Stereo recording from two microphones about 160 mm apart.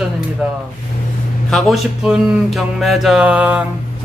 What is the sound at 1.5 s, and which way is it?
Speech, centre (ahead or behind).